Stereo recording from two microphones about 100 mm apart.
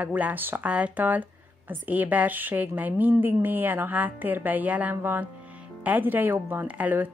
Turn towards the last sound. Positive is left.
turn(degrees=-15)  # may be behind; listen again after turning